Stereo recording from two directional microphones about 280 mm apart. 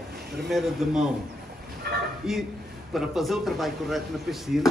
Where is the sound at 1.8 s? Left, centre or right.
Right.